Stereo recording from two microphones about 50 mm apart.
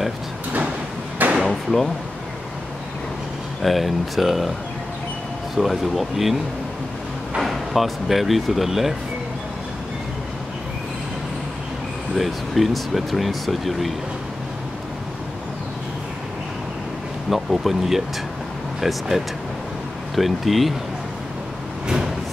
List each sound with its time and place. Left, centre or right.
1.4 s drawer open or close: centre
3.6 s speech: centre
5.6 s speech: centre
7.3 s speech: centre
12.2 s speech: centre
17.3 s speech: centre
21.8 s a sound: centre